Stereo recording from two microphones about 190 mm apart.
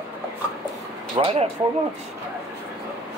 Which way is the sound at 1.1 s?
30° right (ahead or behind).